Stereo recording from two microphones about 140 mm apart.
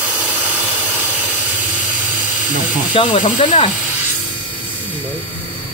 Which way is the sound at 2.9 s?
40° left (ahead or behind).